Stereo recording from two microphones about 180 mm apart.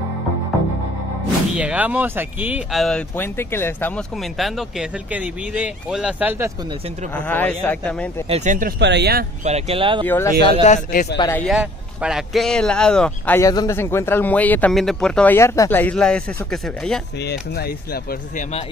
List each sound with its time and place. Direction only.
1.5 s speech: 5° right (ahead or behind)
7.2 s speech: 10° left (ahead or behind)
8.3 s speech: 45° right (ahead or behind)
8.7 s speech: 70° right (ahead or behind)
9.4 s speech: 35° right (ahead or behind)
10.0 s speech: 10° left (ahead or behind)
10.4 s speech: 35° left (ahead or behind)
10.9 s a man's voice: 55° left (ahead or behind)
11.3 s speech: centre (ahead or behind)
13.4 s speech: 20° left (ahead or behind)
17.2 s speech: 65° left (ahead or behind)